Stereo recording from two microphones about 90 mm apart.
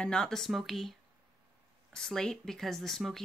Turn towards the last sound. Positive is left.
turn(degrees=5)  # may be behind; listen again after turning